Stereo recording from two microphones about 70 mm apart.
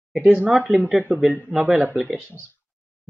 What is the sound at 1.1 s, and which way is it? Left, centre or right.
Speech, centre.